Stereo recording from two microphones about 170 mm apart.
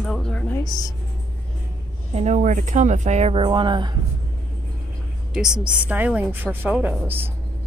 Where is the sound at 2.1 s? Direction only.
45° right (ahead or behind).